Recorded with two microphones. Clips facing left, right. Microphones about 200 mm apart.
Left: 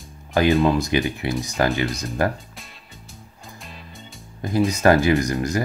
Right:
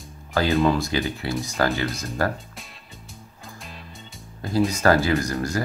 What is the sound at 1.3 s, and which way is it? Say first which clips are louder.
Speech: left 1 dB; centre (ahead or behind).